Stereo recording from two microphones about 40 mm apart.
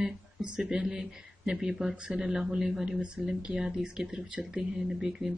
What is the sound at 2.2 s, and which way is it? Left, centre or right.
Speech, centre.